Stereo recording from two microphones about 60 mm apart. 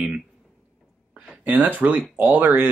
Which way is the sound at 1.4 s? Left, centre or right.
Right.